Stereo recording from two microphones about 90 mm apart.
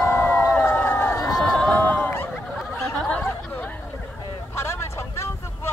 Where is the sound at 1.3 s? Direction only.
5° left (ahead or behind).